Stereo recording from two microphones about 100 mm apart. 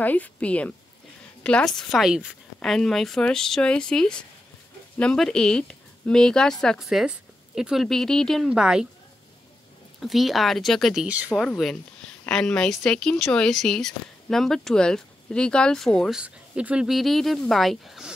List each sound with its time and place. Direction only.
0.0 s speech: 15° left (ahead or behind)
8.5 s a woman's voice: 5° right (ahead or behind)
9.9 s speech: centre (ahead or behind)
16.1 s speech: 10° right (ahead or behind)